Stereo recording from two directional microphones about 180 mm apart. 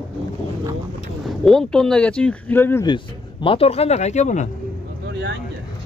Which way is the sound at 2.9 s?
30° left (ahead or behind).